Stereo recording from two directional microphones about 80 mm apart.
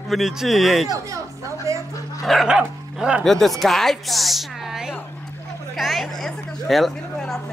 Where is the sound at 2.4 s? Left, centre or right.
Centre.